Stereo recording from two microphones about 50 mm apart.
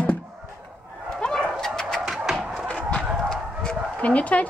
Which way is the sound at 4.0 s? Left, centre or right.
Left.